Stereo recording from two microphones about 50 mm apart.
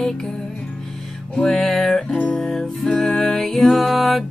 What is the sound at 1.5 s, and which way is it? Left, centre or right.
Music, centre.